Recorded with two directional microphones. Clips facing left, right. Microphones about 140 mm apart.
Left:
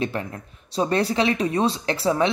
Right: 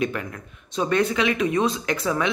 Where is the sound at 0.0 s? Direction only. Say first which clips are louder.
Even; 30° left (ahead or behind).